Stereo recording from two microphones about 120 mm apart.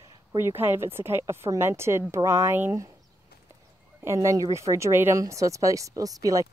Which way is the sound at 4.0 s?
25° right (ahead or behind).